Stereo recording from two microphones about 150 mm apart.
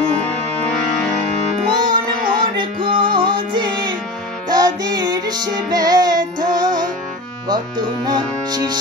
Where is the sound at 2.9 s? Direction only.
35° right (ahead or behind).